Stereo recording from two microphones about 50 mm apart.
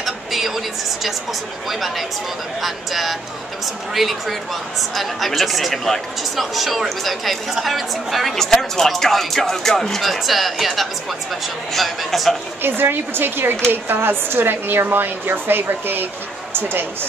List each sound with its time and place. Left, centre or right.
0.0 s a sound: centre
1.7 s speech: centre
12.6 s a woman's voice: right